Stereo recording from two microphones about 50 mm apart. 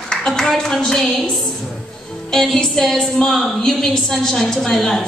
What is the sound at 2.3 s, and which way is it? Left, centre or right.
A woman's voice, centre.